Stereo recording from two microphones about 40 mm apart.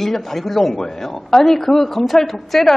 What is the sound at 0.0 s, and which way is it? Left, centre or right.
A woman's voice, centre.